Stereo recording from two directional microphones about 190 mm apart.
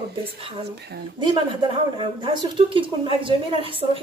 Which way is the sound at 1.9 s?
25° right (ahead or behind).